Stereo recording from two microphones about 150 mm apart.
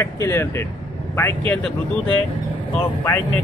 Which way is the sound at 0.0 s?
20° left (ahead or behind).